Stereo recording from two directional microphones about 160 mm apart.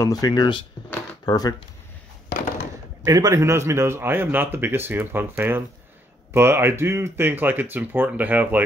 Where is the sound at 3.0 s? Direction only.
20° right (ahead or behind).